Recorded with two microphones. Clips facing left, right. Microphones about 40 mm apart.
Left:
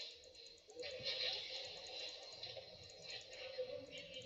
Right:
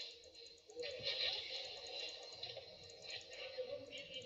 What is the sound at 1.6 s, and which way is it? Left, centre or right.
Music, right.